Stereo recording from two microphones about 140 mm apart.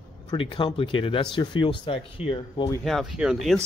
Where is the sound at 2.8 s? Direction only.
Centre (ahead or behind).